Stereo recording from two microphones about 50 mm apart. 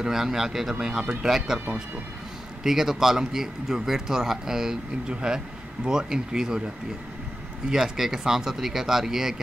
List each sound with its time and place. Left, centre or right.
0.0 s a man's voice: centre
2.6 s a man's voice: centre
7.7 s a man's voice: centre